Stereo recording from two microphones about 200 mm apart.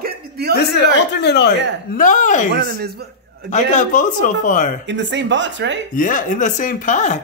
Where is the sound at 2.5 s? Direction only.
50° right (ahead or behind).